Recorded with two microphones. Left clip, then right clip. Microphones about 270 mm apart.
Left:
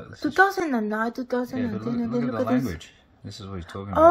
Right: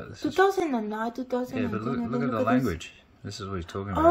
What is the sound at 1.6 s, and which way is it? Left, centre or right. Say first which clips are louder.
A man's voice: left 1 dB; centre.